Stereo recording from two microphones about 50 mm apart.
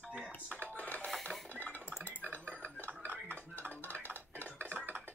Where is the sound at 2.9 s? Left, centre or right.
Right.